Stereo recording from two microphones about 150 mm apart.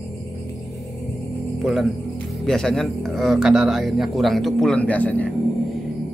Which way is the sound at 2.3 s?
Centre (ahead or behind).